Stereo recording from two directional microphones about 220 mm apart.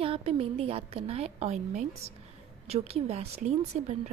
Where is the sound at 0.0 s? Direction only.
25° right (ahead or behind).